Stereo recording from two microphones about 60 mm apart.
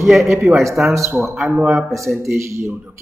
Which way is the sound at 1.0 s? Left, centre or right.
Right.